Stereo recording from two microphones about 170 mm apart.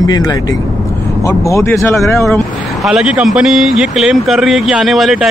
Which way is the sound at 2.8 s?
Centre (ahead or behind).